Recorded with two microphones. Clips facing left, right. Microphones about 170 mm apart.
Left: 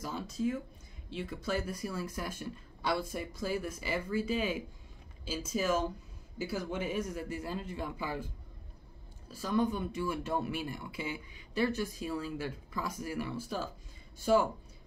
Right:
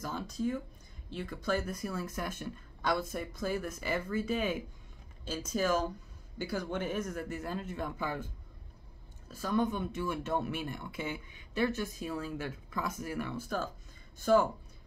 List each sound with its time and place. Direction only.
0.0 s a sound: 5° left (ahead or behind)
1.1 s speech: 5° left (ahead or behind)
1.7 s speech: 50° right (ahead or behind)
3.2 s speech: 10° left (ahead or behind)
3.6 s speech: 50° right (ahead or behind)
5.2 s speech: 5° left (ahead or behind)
7.2 s speech: 50° right (ahead or behind)
9.3 s speech: 50° right (ahead or behind)